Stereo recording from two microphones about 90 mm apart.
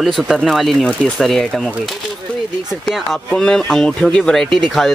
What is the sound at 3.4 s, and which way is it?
Speech, 5° left (ahead or behind).